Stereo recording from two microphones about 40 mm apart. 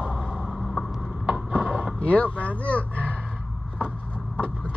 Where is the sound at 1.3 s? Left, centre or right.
Right.